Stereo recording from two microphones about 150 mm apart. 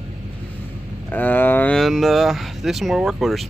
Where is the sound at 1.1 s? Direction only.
10° left (ahead or behind).